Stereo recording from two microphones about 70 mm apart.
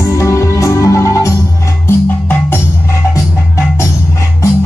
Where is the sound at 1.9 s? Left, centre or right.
Left.